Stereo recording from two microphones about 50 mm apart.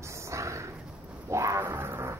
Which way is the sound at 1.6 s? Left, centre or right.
Right.